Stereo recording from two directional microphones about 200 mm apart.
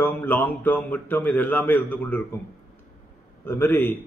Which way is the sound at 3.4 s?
10° left (ahead or behind).